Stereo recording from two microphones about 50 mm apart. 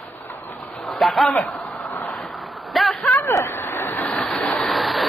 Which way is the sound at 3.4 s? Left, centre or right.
Left.